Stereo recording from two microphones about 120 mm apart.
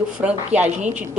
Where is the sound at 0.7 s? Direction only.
85° right.